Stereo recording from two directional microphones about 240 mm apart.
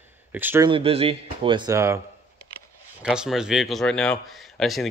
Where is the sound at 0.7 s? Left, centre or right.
Right.